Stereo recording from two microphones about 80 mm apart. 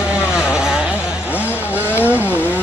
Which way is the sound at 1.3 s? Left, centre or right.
Left.